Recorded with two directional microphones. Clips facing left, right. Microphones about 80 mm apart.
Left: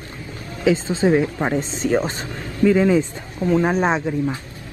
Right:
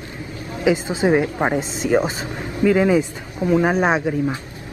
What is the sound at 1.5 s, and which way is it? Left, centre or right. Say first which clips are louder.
Speech: even; centre.